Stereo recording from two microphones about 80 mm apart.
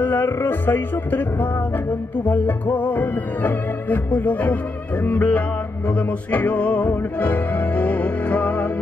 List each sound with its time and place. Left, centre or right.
0.0 s music: left